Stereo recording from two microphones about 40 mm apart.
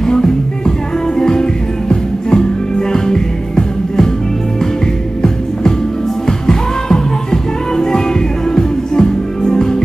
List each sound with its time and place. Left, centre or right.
0.0 s music: centre
7.7 s music: centre